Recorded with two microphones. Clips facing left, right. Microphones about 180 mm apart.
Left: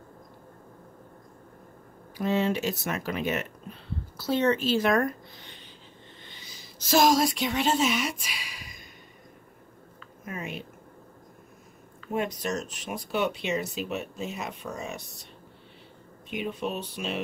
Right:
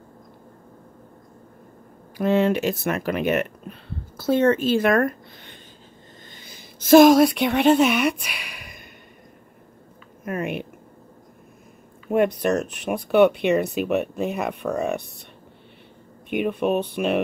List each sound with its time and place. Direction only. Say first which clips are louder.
2.1 s speech: right 6 dB; 60° right (ahead or behind)
4.2 s a woman's voice: right 6 dB; 50° right (ahead or behind)
10.2 s speech: right 9 dB; 60° right (ahead or behind)
12.1 s speech: right 10 dB; 60° right (ahead or behind)
16.3 s speech: right 9 dB; 60° right (ahead or behind)